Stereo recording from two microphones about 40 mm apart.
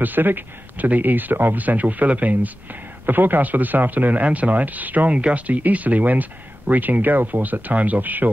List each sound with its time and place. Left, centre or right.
0.0 s speech: right
1.6 s speech: right
4.2 s speech: right